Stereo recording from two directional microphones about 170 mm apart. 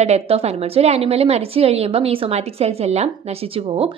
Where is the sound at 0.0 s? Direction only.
35° right (ahead or behind).